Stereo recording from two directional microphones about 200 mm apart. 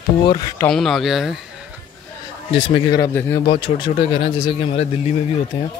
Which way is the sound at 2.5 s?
25° left (ahead or behind).